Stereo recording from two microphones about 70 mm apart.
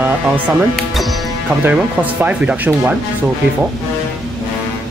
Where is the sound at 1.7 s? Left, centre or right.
Right.